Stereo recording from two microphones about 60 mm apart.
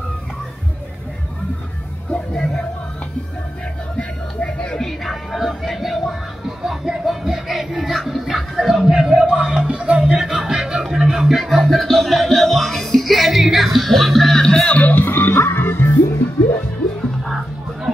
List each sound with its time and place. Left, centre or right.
2.0 s music: centre
4.4 s music: left
4.7 s music: centre; by 16.0 s left